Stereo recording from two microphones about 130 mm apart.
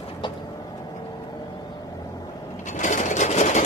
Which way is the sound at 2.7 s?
70° left (ahead or behind).